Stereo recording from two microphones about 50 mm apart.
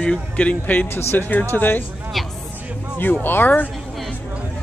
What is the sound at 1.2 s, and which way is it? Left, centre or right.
Speech, left.